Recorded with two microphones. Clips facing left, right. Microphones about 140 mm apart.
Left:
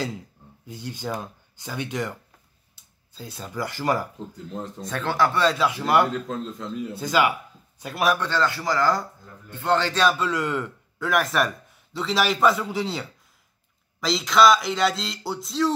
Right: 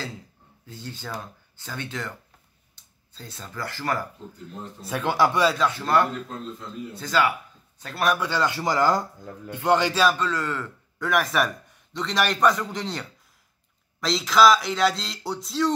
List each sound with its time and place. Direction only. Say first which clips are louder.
0.7 s speech: left 5 dB; 15° left (ahead or behind)
4.8 s a man's voice: right 1 dB; 15° right (ahead or behind)
5.7 s speech: left 2 dB; 10° left (ahead or behind)
8.2 s a man's voice: even; 10° right (ahead or behind)
10.0 s speech: left 1 dB; 10° left (ahead or behind)
11.0 s a man's voice: left 1 dB; centre (ahead or behind)